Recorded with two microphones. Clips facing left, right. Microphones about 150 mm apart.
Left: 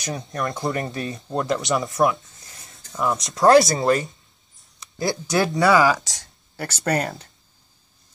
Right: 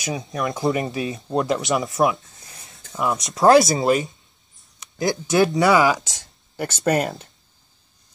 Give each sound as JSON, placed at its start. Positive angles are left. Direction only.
{"t": 0.0, "sound": "speech", "side_deg": 0}
{"t": 1.1, "sound": "speech", "side_deg": -20}
{"t": 4.6, "sound": "a sound", "side_deg": 0}
{"t": 5.6, "sound": "speech", "side_deg": -20}
{"t": 5.9, "sound": "speech", "side_deg": 0}